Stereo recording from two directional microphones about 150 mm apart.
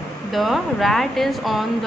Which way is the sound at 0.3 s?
Centre (ahead or behind).